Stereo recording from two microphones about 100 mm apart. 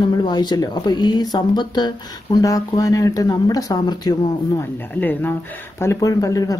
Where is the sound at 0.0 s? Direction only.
50° left (ahead or behind).